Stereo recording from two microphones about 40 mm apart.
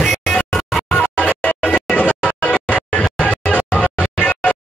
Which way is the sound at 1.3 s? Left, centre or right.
Left.